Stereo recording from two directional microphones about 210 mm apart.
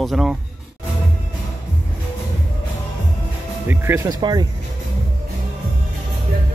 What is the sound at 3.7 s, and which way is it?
Speech, 10° right (ahead or behind).